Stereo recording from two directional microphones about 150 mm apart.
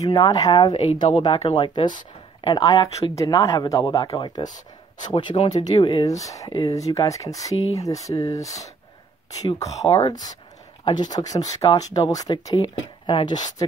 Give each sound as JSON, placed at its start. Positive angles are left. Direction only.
{"t": 0.0, "sound": "speech", "side_deg": 25}
{"t": 1.2, "sound": "speech", "side_deg": 40}
{"t": 2.4, "sound": "speech", "side_deg": 25}
{"t": 4.5, "sound": "speech", "side_deg": 55}
{"t": 5.1, "sound": "speech", "side_deg": 35}